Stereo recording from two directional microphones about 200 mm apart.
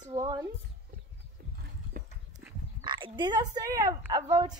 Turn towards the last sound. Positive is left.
turn(degrees=-20)  # may be behind; listen again after turning